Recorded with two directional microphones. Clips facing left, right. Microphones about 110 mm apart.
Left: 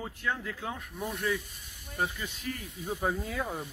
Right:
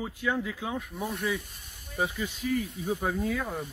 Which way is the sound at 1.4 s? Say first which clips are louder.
Right 1 dB; 50° right (ahead or behind).